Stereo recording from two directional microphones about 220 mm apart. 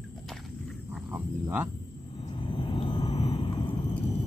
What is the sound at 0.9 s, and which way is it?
Wild animals, 10° right (ahead or behind).